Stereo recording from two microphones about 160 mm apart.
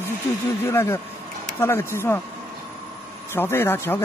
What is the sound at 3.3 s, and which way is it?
Speech, 15° left (ahead or behind).